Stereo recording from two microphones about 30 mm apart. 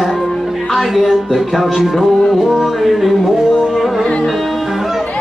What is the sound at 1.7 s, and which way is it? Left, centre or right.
Music, centre.